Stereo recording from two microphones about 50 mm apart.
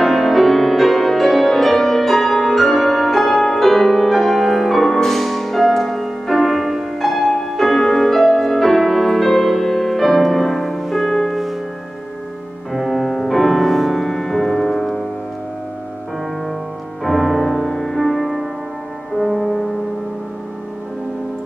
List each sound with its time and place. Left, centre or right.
0.0 s music: centre
12.7 s music: centre
17.0 s music: centre